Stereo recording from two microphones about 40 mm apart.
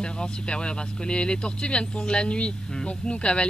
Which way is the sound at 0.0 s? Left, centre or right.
Left.